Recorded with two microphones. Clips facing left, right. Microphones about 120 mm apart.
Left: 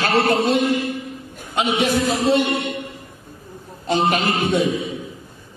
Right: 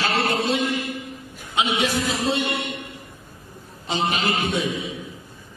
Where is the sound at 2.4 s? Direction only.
30° left (ahead or behind).